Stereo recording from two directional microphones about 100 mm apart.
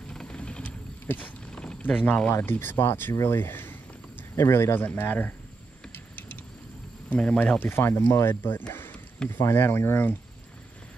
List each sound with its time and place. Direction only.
0.1 s a sound: 10° left (ahead or behind)
2.3 s speech: 20° left (ahead or behind)
6.1 s vehicle: 15° left (ahead or behind)
7.1 s speech: 10° left (ahead or behind)
7.7 s speech: 25° left (ahead or behind)